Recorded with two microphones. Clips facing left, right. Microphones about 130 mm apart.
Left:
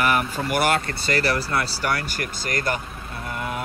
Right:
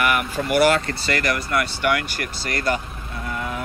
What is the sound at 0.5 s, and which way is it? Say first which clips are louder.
Speech: right 5 dB; 50° left (ahead or behind).